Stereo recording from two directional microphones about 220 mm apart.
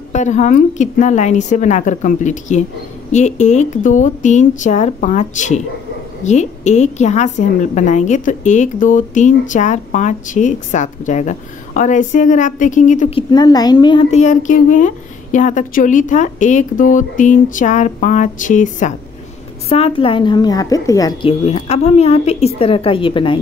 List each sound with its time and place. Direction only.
0.1 s a woman's voice: 30° left (ahead or behind)
13.3 s a woman's voice: 20° left (ahead or behind)